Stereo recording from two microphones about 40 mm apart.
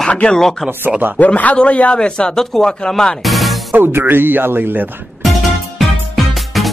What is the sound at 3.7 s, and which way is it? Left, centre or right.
Speech, right.